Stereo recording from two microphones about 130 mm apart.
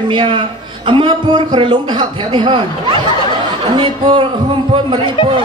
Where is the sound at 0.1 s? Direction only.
40° right (ahead or behind).